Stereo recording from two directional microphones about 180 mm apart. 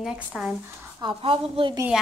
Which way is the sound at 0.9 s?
30° right (ahead or behind).